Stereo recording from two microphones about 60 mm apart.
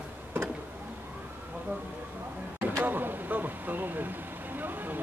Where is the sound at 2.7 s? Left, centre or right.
Right.